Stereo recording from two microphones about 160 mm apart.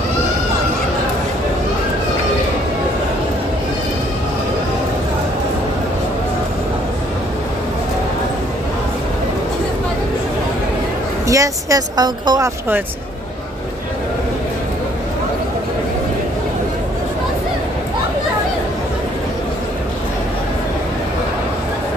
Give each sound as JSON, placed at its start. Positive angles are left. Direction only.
{"t": 11.2, "sound": "speech", "side_deg": -20}